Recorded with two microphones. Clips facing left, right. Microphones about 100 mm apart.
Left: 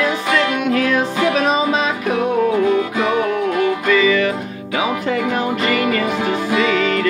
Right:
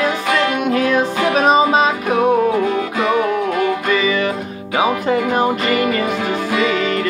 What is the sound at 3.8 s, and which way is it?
Music, 25° right (ahead or behind).